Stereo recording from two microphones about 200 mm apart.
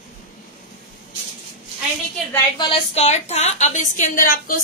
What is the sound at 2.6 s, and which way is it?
A woman's voice, 30° left (ahead or behind).